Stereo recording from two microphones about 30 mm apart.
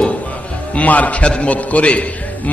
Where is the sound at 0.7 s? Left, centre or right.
Left.